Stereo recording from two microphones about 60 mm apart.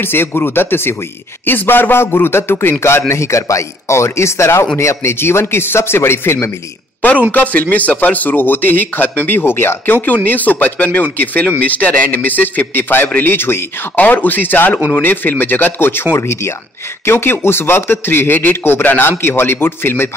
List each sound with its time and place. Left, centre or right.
0.0 s a man's voice: left
3.1 s a man's voice: left
7.2 s a man's voice: left
10.0 s a man's voice: left